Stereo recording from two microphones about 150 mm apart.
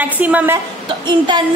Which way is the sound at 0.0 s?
10° right (ahead or behind).